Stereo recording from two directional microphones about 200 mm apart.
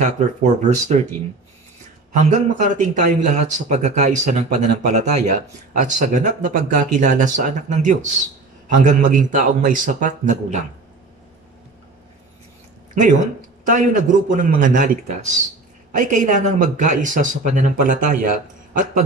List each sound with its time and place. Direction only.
0.0 s speech: 35° right (ahead or behind)
2.1 s speech: 35° right (ahead or behind)
13.7 s speech: 40° right (ahead or behind)